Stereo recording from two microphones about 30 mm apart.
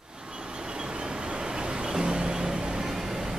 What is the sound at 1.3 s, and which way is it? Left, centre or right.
Vehicle, right.